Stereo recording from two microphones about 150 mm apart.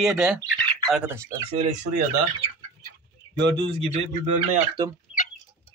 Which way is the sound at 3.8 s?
45° right (ahead or behind).